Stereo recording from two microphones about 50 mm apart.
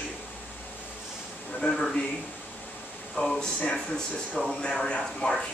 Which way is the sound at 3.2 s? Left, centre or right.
Left.